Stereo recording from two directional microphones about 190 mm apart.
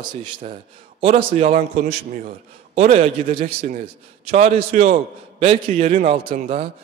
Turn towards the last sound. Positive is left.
turn(degrees=-35)  # may be behind; listen again after turning